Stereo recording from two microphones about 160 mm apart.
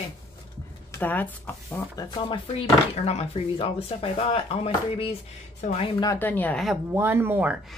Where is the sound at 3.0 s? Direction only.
40° left (ahead or behind).